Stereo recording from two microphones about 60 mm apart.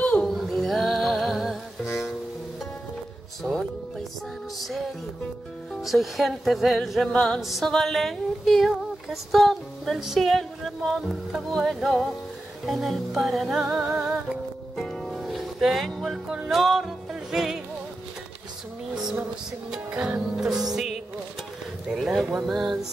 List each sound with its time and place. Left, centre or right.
0.2 s music: centre
4.6 s music: centre
7.6 s female singing: centre
12.6 s music: centre
14.8 s music: centre
19.9 s speech: right
20.3 s music: centre
21.8 s speech: centre